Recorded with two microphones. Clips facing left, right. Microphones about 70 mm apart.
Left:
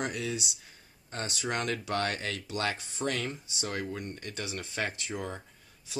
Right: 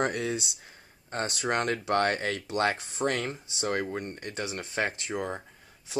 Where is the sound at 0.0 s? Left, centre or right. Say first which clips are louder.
Right 5 dB; right.